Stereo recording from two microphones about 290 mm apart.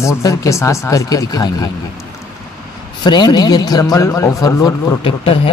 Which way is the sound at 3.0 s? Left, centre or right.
Centre.